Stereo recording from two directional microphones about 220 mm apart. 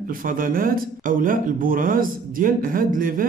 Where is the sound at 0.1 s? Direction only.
40° right (ahead or behind).